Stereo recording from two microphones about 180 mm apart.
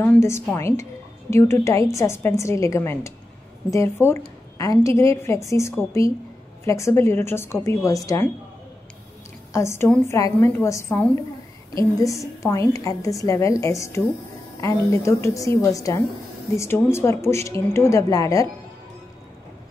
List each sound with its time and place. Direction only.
0.0 s a woman's voice: 15° left (ahead or behind)
9.5 s a woman's voice: 15° left (ahead or behind)